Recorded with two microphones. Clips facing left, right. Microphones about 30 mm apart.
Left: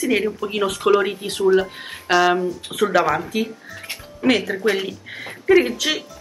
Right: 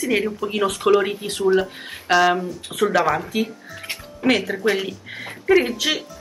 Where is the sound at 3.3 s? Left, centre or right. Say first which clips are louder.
Even; centre.